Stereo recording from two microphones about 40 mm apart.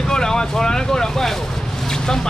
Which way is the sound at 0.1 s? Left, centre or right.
Centre.